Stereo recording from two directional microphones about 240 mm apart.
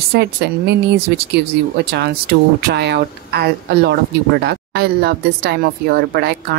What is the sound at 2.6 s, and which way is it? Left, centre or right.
Speech, right.